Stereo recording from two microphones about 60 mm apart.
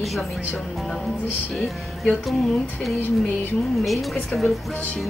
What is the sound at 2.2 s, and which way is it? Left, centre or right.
A woman's voice, centre.